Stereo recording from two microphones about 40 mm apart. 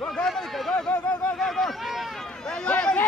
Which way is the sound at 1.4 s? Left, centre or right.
Centre.